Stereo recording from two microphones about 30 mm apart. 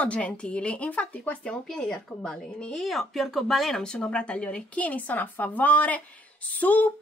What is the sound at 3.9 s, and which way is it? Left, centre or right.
A woman's voice, left.